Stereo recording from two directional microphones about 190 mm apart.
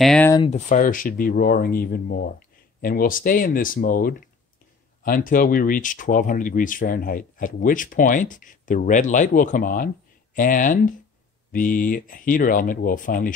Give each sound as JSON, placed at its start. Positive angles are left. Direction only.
{"t": 0.0, "sound": "speech", "side_deg": 5}
{"t": 0.5, "sound": "speech", "side_deg": 40}